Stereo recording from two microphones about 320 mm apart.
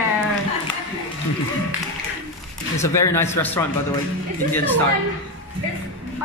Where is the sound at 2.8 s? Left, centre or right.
Centre.